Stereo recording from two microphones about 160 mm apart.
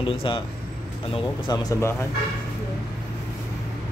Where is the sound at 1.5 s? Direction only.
20° left (ahead or behind).